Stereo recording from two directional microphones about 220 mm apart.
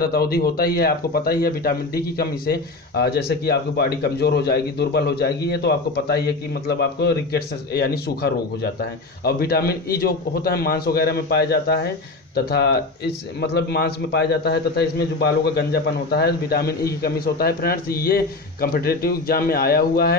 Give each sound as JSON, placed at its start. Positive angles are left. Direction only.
{"t": 0.0, "sound": "speech", "side_deg": 45}